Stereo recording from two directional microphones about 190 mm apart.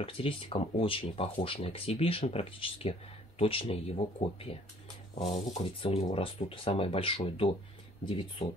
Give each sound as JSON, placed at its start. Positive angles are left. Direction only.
{"t": 0.0, "sound": "speech", "side_deg": 30}